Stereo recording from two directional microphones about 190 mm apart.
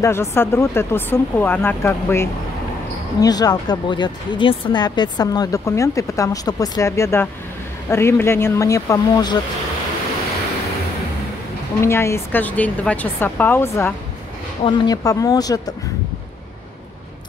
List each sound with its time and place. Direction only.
0.0 s speech: 15° left (ahead or behind)
11.8 s speech: 15° left (ahead or behind)